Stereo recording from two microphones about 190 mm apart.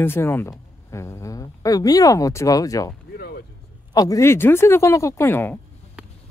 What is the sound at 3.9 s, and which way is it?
Speech, 20° left (ahead or behind).